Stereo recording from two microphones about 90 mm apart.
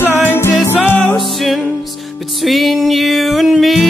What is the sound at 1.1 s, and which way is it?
Music, centre (ahead or behind).